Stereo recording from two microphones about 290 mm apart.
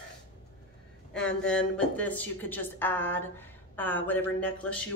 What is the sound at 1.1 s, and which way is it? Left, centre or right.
A woman's voice, centre.